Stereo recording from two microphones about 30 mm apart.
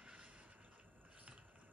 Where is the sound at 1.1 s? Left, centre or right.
Right.